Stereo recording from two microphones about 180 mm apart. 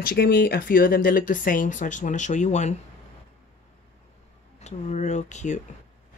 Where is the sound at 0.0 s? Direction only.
55° left (ahead or behind); by 2.7 s 40° left (ahead or behind).